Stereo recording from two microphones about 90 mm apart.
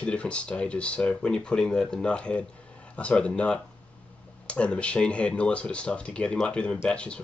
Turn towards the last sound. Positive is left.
turn(degrees=10)  # may be behind; listen again after turning